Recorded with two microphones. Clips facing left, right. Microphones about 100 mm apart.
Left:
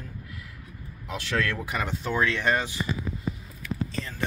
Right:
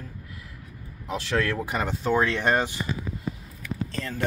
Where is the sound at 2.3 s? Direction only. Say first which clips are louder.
Right 2 dB; 40° right (ahead or behind).